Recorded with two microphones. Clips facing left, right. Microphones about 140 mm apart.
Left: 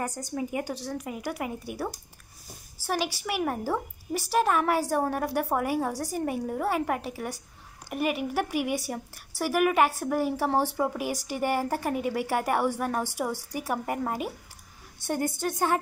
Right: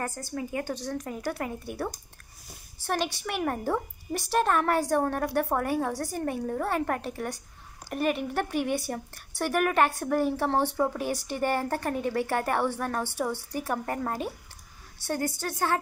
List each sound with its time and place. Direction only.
0.0 s a woman's voice: 15° left (ahead or behind)
3.2 s a woman's voice: 5° left (ahead or behind)
15.0 s a woman's voice: 20° left (ahead or behind)